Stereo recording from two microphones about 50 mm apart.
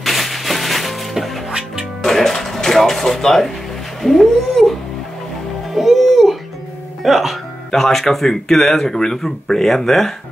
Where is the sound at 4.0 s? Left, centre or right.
Centre.